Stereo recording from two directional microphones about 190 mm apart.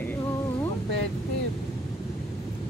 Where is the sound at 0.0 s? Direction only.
10° left (ahead or behind).